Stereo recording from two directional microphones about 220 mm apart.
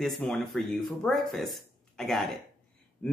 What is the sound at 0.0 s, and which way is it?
Speech, centre (ahead or behind).